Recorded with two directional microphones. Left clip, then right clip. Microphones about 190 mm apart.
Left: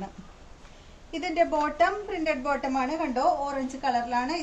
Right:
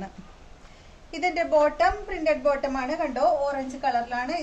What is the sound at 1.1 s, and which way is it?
Speech, 45° right (ahead or behind).